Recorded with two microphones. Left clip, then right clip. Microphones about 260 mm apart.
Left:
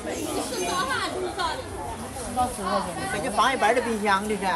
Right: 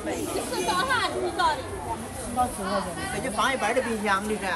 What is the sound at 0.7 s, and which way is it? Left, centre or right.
Speech, centre.